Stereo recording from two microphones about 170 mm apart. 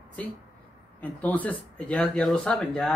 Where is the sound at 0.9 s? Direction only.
10° left (ahead or behind).